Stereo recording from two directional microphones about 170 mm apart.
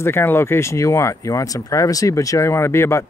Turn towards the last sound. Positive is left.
turn(degrees=15)  # may be behind; listen again after turning